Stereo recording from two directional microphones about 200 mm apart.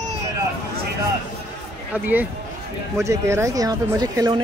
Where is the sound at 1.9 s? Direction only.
10° right (ahead or behind).